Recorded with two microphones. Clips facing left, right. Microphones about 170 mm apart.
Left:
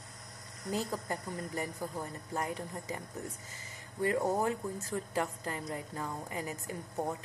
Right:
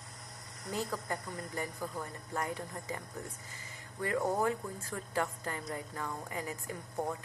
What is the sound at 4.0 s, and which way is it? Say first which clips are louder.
A woman's voice: left 1 dB; 25° left (ahead or behind).